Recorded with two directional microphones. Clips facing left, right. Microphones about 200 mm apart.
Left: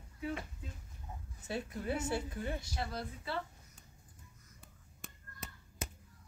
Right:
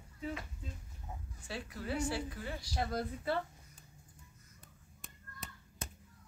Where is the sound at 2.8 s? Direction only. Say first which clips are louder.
Right 4 dB; 50° right (ahead or behind).